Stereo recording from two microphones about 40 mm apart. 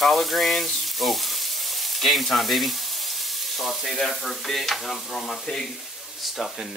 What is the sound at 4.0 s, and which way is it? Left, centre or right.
Stir, centre.